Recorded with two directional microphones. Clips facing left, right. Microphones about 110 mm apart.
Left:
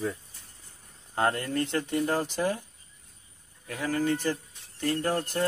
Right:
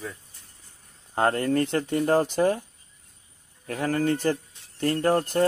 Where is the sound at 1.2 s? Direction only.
35° right (ahead or behind).